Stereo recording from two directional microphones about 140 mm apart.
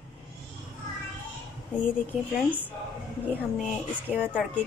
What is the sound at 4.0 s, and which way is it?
Speech, 10° right (ahead or behind).